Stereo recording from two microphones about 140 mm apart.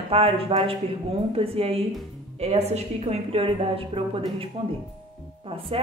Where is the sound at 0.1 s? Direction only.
40° right (ahead or behind).